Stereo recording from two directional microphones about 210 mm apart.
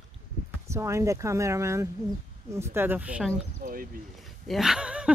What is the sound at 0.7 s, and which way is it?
Speech, 15° right (ahead or behind).